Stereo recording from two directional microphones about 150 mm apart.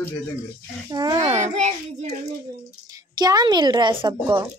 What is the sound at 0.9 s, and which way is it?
Speech, 25° right (ahead or behind).